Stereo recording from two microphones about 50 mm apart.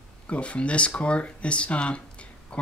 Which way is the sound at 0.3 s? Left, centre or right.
Left.